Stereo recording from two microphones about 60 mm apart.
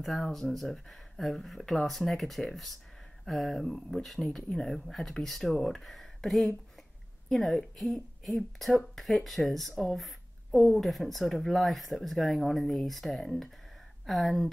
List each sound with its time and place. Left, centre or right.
0.0 s speech: centre